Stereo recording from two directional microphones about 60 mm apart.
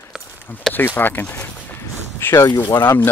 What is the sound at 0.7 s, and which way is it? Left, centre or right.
Speech, left.